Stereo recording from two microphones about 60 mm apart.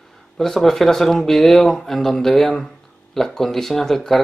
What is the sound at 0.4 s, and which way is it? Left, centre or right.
Speech, centre.